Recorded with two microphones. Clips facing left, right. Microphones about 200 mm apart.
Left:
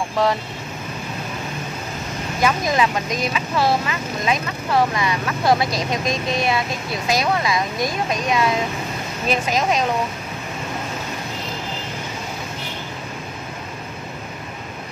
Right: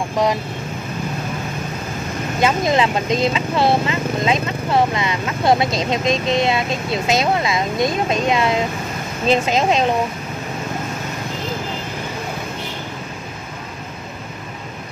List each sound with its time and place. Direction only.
0.2 s speech: 15° right (ahead or behind)
2.4 s speech: 25° right (ahead or behind)